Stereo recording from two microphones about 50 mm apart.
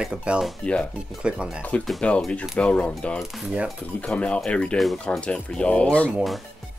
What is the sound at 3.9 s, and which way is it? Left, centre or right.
Speech, left.